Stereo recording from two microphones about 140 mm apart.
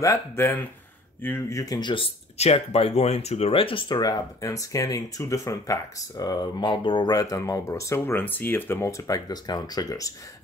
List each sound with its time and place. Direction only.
0.0 s speech: 20° left (ahead or behind)
2.3 s speech: 50° left (ahead or behind); by 10.1 s 25° left (ahead or behind)